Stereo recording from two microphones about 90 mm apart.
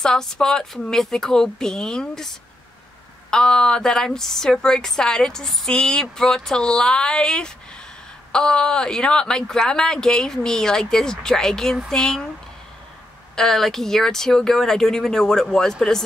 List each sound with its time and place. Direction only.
0.0 s a woman's voice: 5° left (ahead or behind)
13.4 s speech: 5° left (ahead or behind)